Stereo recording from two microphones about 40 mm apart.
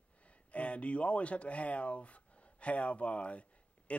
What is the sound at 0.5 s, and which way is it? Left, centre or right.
Speech, left.